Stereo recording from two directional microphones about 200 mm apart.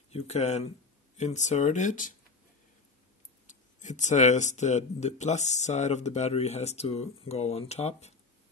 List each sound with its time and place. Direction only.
0.1 s speech: 30° left (ahead or behind)
3.4 s speech: 35° left (ahead or behind)